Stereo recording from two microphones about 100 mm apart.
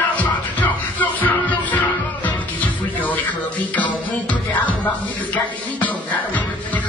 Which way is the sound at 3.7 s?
15° left (ahead or behind).